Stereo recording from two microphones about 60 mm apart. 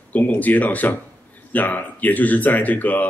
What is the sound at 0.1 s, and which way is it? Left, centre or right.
A man's voice, left.